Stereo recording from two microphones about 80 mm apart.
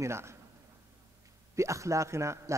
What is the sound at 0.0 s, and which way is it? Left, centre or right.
Speech, right.